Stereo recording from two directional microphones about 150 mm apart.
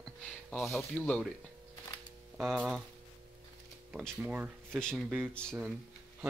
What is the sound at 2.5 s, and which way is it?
Speech, centre (ahead or behind).